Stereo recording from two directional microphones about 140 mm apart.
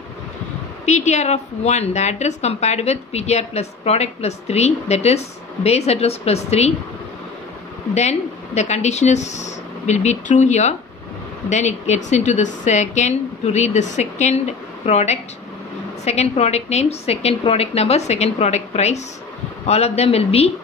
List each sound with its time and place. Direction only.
0.8 s a woman's voice: 55° left (ahead or behind)
7.9 s a woman's voice: 55° left (ahead or behind)